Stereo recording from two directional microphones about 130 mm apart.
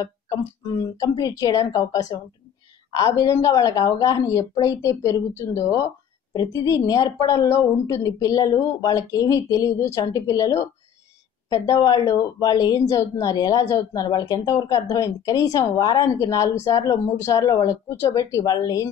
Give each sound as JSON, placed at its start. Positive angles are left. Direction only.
{"t": 0.0, "sound": "speech", "side_deg": 30}